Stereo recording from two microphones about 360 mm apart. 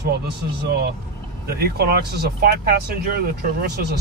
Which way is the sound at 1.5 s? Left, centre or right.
Right.